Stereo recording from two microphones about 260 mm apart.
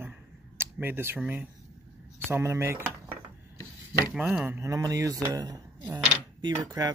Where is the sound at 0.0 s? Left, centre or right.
Centre.